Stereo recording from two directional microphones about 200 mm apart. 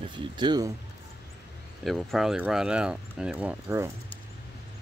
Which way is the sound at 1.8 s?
Centre (ahead or behind).